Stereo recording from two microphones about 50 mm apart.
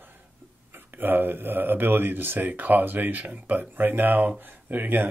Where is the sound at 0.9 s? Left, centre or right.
Right.